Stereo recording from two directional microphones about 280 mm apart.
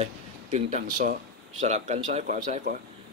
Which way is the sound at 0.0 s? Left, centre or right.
Right.